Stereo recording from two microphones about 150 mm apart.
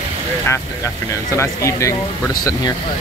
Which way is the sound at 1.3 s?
20° left (ahead or behind).